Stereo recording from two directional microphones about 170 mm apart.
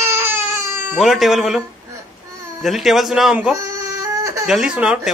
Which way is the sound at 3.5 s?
15° right (ahead or behind).